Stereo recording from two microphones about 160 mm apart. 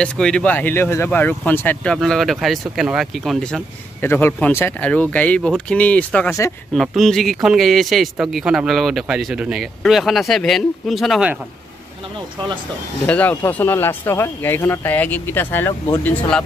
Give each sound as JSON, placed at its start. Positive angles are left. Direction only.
{"t": 0.0, "sound": "speech", "side_deg": 5}
{"t": 2.0, "sound": "speech", "side_deg": 0}
{"t": 4.0, "sound": "speech", "side_deg": 15}
{"t": 13.0, "sound": "speech", "side_deg": 10}